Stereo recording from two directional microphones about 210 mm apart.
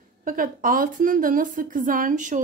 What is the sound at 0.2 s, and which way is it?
A woman's voice, 40° right (ahead or behind).